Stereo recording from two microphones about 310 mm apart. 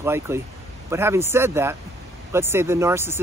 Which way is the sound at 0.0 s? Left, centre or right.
Centre.